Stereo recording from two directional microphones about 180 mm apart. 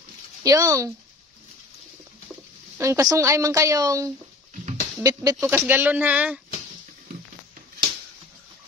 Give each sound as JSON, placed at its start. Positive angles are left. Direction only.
{"t": 0.4, "sound": "speech", "side_deg": -20}
{"t": 2.8, "sound": "speech", "side_deg": -15}